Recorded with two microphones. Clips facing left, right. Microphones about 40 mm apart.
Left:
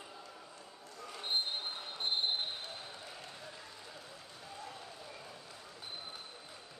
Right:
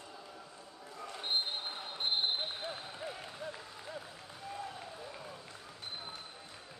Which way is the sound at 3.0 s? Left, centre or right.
Centre.